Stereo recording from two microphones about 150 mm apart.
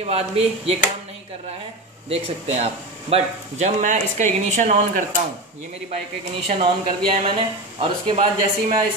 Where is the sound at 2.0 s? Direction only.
40° right (ahead or behind).